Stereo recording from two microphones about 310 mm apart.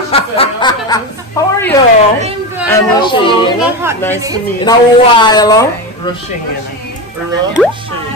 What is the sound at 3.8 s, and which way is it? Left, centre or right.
Speech, centre.